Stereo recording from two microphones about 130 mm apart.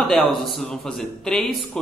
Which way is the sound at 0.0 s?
Centre (ahead or behind).